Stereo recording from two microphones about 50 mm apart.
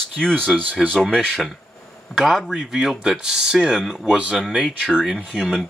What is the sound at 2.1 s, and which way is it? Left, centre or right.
Speech, centre.